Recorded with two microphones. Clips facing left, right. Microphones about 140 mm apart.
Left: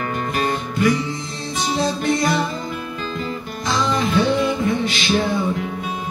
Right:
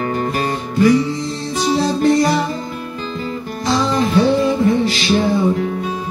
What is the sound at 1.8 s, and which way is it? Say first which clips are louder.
Music: right 6 dB; 35° right (ahead or behind).